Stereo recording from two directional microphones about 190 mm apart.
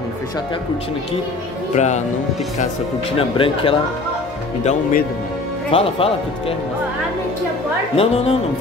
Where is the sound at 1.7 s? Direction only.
40° left (ahead or behind).